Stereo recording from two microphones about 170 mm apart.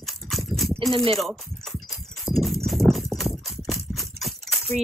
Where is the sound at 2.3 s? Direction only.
Centre (ahead or behind).